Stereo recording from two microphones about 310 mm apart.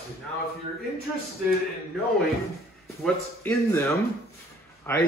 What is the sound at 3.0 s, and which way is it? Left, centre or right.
A man's voice, centre.